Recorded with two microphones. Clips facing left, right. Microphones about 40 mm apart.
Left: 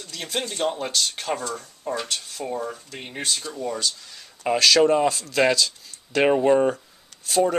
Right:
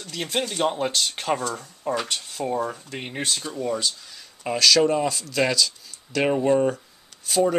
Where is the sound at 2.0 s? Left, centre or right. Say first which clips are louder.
Right 2 dB; right.